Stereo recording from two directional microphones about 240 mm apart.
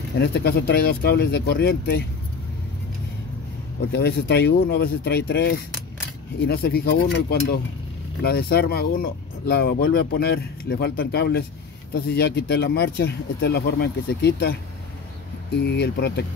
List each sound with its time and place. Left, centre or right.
0.2 s speech: left
3.9 s speech: left
15.5 s speech: left